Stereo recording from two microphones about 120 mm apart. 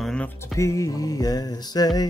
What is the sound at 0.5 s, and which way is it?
Mantra, 25° left (ahead or behind).